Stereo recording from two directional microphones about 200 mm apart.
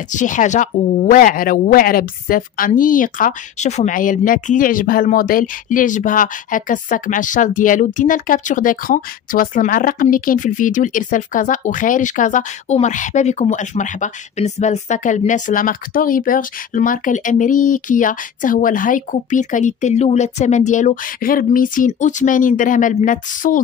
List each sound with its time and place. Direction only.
0.1 s a woman's voice: 40° left (ahead or behind)